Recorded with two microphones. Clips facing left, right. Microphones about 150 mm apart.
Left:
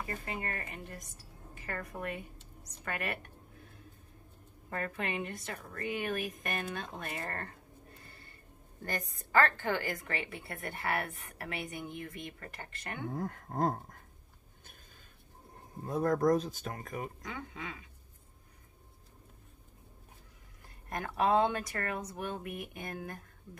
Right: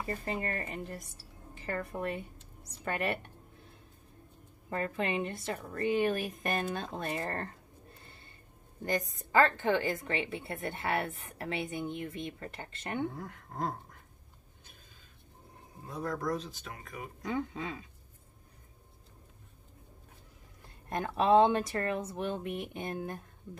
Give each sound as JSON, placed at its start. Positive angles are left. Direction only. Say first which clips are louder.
{"t": 0.0, "sound": "a woman's voice", "louder": "right 4 dB", "side_deg": -35}
{"t": 4.6, "sound": "a woman's voice", "louder": "right 4 dB", "side_deg": -25}
{"t": 8.0, "sound": "a sound", "louder": "even", "side_deg": -25}
{"t": 8.8, "sound": "a woman's voice", "louder": "right 6 dB", "side_deg": -20}
{"t": 13.1, "sound": "speech", "louder": "left 6 dB", "side_deg": 45}
{"t": 15.8, "sound": "speech", "louder": "left 7 dB", "side_deg": 50}
{"t": 17.2, "sound": "a woman's voice", "louder": "right 8 dB", "side_deg": -30}
{"t": 20.9, "sound": "a woman's voice", "louder": "right 4 dB", "side_deg": -25}